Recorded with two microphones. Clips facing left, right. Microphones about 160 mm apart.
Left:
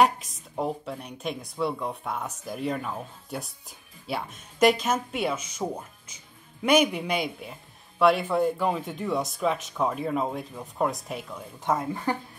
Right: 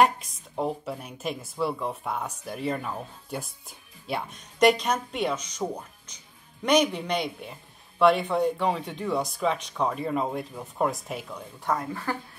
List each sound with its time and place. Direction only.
0.0 s speech: centre (ahead or behind)
11.6 s speech: 20° left (ahead or behind)